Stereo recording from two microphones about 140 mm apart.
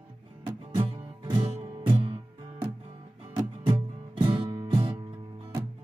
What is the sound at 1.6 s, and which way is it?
Music, 45° right (ahead or behind).